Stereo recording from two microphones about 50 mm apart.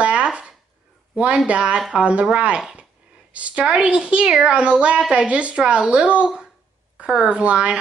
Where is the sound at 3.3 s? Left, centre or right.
Right.